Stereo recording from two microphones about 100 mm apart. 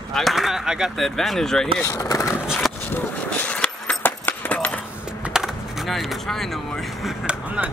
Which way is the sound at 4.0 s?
20° left (ahead or behind).